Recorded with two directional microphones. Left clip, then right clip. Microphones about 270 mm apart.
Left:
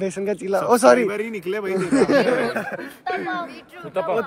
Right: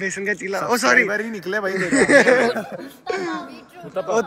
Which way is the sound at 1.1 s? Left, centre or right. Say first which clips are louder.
Right 2 dB; centre.